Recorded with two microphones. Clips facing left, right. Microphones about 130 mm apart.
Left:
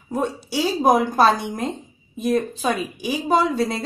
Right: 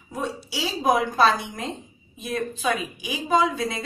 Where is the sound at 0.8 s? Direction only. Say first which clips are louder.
Left 3 dB; 45° left (ahead or behind).